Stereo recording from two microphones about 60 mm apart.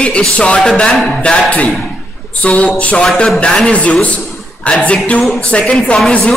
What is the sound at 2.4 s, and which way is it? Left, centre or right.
A man's voice, left.